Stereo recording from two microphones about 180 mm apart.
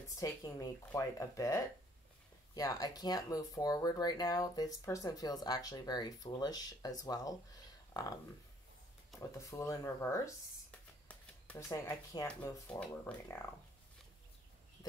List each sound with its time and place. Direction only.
0.2 s speech: 20° left (ahead or behind)
9.1 s a sound: centre (ahead or behind)
9.5 s speech: 15° left (ahead or behind)
10.7 s shuffling cards: 5° left (ahead or behind)
11.7 s speech: 20° left (ahead or behind)